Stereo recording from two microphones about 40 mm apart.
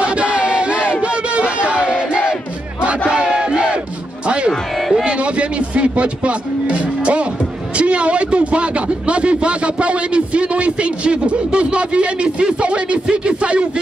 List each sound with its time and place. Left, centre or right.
0.0 s crowd: right
0.8 s battle cry: right
4.5 s music: centre
5.0 s a sound: right
7.7 s a man's voice: right